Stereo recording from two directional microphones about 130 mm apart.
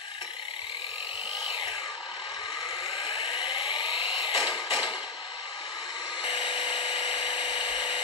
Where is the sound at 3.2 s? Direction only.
35° left (ahead or behind).